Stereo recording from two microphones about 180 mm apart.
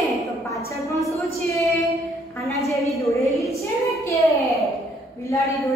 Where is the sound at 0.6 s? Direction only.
15° left (ahead or behind).